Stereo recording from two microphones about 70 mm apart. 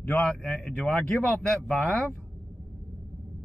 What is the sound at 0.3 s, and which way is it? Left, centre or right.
Speech, centre.